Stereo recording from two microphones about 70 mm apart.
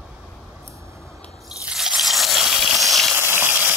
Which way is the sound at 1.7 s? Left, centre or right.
Centre.